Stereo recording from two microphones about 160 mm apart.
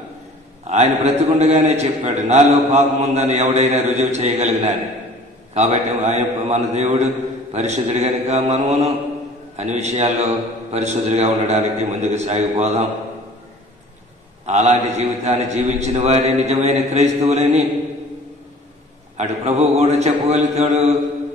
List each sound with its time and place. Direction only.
0.7 s a man's voice: 45° right (ahead or behind)
5.5 s a man's voice: 45° right (ahead or behind)
14.4 s a man's voice: 45° right (ahead or behind)
19.1 s a man's voice: 45° right (ahead or behind)